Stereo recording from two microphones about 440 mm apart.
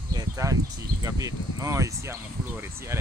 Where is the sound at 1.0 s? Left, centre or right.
Centre.